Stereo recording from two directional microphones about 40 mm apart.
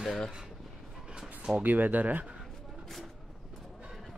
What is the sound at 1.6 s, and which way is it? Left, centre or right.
Speech, right.